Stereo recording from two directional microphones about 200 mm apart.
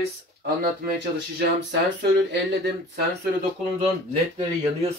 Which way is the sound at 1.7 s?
60° right (ahead or behind).